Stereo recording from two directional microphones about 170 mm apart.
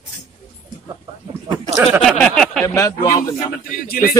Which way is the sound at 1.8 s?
Centre (ahead or behind).